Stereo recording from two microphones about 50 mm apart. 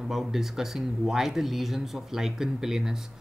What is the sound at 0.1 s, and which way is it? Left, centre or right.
Speech, centre.